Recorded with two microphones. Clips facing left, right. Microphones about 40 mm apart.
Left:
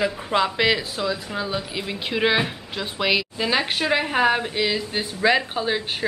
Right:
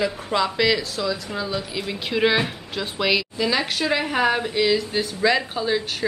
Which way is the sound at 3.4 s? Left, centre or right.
Left.